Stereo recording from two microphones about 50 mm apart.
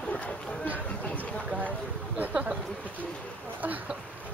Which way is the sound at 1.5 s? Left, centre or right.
Right.